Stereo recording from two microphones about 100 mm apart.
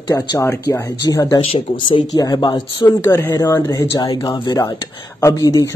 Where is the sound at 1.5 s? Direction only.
55° left (ahead or behind).